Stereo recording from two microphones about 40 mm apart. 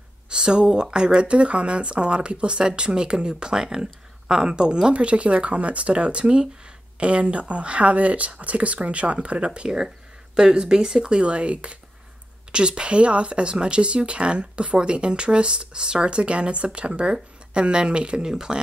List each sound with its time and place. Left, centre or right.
0.3 s speech: centre
9.7 s speech: centre
18.3 s speech: centre